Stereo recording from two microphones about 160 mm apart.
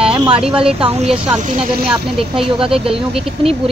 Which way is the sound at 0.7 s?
35° right (ahead or behind).